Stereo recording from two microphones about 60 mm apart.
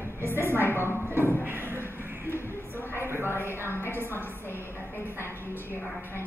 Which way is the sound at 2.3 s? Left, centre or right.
Left.